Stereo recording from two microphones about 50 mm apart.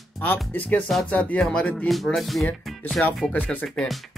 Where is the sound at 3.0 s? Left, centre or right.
Left.